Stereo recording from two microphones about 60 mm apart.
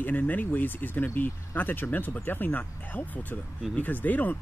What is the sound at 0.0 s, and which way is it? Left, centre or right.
Speech, left.